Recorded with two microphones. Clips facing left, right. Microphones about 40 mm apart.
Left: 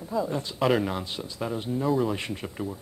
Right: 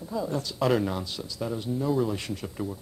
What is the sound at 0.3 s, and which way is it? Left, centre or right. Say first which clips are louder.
Speech: right 1 dB; left.